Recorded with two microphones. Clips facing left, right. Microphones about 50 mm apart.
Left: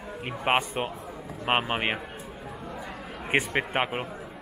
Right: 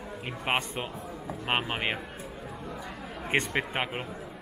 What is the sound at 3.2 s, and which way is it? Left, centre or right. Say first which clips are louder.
Speech: left 2 dB; centre.